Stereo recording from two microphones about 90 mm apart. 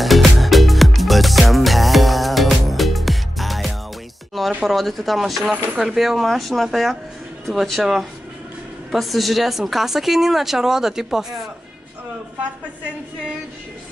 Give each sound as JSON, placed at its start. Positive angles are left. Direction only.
{"t": 0.0, "sound": "music", "side_deg": 0}
{"t": 4.6, "sound": "speech", "side_deg": 0}